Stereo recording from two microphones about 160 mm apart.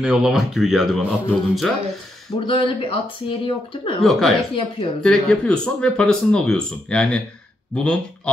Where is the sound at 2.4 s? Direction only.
35° left (ahead or behind).